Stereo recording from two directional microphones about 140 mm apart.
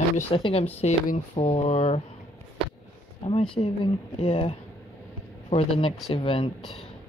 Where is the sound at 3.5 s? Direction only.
40° left (ahead or behind).